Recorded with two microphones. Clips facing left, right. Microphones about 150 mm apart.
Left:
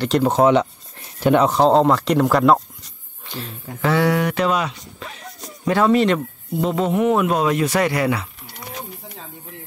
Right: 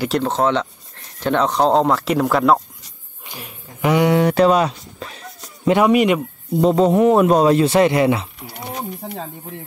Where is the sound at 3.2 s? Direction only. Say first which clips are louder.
Left 4 dB; 15° right (ahead or behind); by 5.1 s 35° right (ahead or behind).